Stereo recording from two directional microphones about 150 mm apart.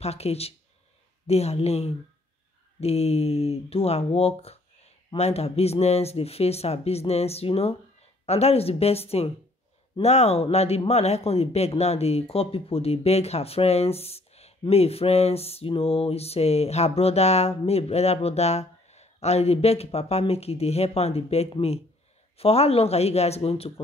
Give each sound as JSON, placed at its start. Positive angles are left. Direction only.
{"t": 0.0, "sound": "speech", "side_deg": 45}